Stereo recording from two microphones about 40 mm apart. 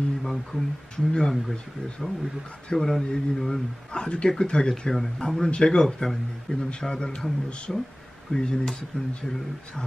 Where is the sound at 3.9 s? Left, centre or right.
Left.